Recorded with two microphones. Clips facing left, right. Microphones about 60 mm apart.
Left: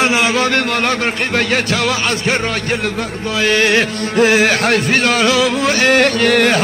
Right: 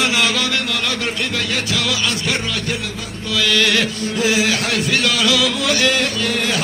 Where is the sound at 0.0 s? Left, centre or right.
Left.